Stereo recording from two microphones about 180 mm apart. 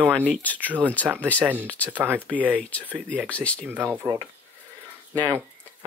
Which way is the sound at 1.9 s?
10° right (ahead or behind).